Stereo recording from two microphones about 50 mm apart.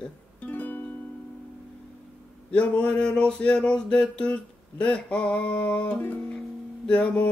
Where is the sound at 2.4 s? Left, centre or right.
Left.